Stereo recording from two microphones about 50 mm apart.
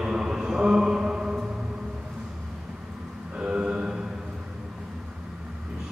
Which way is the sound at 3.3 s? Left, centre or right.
Centre.